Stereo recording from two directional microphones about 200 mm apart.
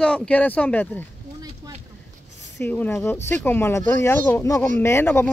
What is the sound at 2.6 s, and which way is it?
A man's voice, 10° left (ahead or behind).